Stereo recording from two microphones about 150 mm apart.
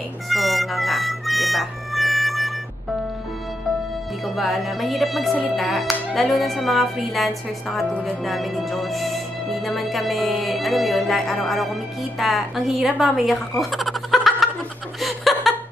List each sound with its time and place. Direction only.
0.3 s music: centre (ahead or behind)
4.2 s speech: centre (ahead or behind)
13.0 s a sound: centre (ahead or behind)
15.0 s chuckle: centre (ahead or behind)